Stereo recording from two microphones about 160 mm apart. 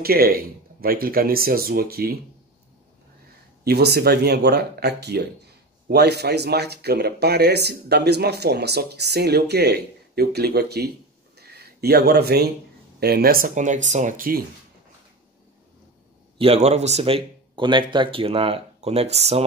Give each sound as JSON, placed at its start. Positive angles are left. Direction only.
{"t": 0.0, "sound": "speech", "side_deg": -70}
{"t": 3.6, "sound": "speech", "side_deg": -90}
{"t": 16.3, "sound": "speech", "side_deg": -40}